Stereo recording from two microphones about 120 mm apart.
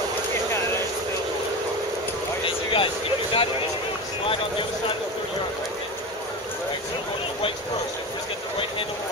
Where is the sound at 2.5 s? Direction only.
45° left (ahead or behind).